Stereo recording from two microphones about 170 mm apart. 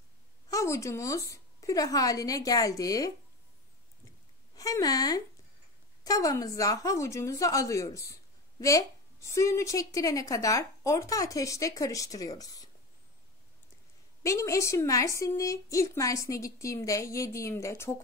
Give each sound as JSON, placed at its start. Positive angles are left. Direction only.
{"t": 0.5, "sound": "a woman's voice", "side_deg": 20}
{"t": 4.6, "sound": "a woman's voice", "side_deg": 20}
{"t": 14.2, "sound": "a woman's voice", "side_deg": 20}